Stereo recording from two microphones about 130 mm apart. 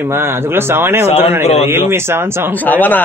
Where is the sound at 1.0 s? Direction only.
55° left (ahead or behind).